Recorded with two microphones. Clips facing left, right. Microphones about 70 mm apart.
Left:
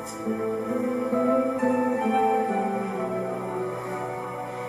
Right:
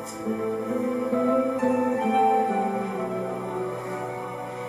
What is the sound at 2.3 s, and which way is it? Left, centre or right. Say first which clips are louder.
Music: right 1 dB; centre.